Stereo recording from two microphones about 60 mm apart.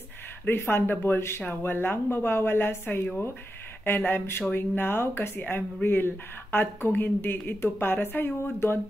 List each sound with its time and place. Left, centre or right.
0.5 s speech: left